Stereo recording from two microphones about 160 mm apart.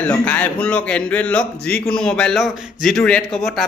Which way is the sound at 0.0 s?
10° left (ahead or behind).